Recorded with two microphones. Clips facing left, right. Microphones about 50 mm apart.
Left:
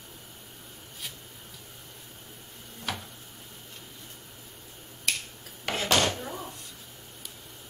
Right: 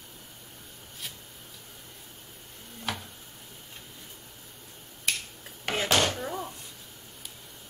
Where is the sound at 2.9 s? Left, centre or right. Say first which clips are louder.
Even; centre.